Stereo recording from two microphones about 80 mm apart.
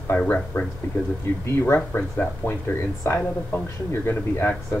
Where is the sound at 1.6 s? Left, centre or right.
Left.